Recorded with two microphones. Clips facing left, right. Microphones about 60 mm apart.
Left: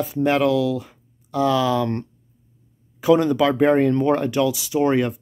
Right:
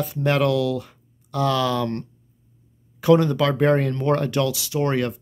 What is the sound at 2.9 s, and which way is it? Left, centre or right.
Speech, centre.